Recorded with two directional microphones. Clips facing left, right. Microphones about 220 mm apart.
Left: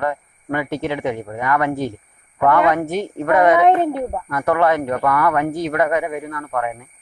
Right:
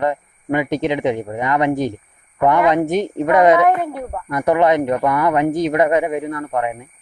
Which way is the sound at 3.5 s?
25° left (ahead or behind).